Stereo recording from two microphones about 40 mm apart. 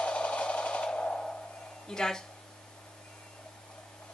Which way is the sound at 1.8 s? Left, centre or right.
Centre.